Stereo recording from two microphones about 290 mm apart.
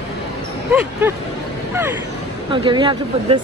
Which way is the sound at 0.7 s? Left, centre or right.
Centre.